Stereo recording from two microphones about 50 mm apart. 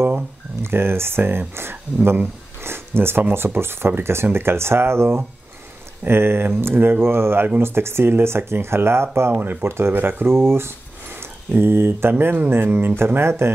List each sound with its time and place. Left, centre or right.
0.6 s speech: right